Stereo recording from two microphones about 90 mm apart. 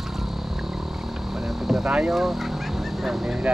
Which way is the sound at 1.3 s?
5° right (ahead or behind).